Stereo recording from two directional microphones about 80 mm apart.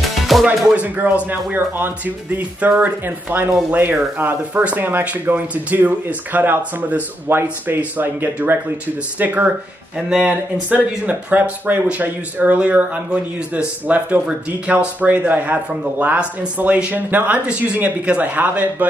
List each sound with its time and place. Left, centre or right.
0.0 s music: centre
0.7 s speech: centre